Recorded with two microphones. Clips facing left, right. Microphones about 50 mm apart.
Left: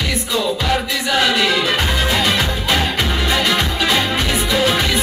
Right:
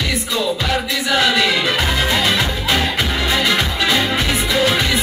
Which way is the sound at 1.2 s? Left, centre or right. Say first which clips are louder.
Even; centre.